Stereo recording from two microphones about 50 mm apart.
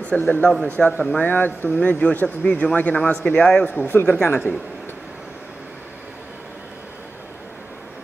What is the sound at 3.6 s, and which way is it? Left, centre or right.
Speech, left.